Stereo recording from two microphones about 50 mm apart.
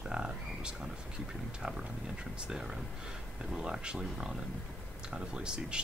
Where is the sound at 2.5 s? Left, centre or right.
Centre.